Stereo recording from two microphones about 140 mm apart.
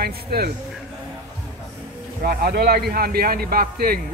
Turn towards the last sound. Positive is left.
turn(degrees=-90)